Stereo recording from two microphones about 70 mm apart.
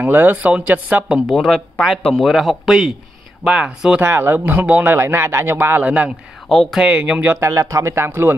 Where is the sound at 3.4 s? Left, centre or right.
Centre.